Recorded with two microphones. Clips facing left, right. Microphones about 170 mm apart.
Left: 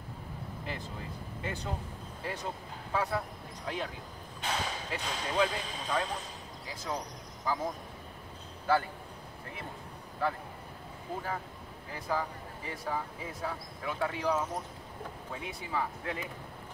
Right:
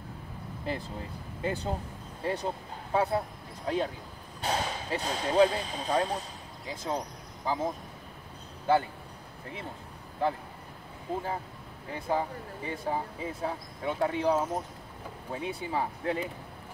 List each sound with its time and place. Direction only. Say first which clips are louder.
1.4 s speech: right 6 dB; 30° right (ahead or behind)
10.2 s speech: right 3 dB; 20° right (ahead or behind)
11.9 s speech: right 4 dB; 25° right (ahead or behind)